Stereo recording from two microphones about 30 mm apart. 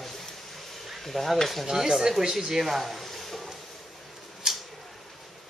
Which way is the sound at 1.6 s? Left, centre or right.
Centre.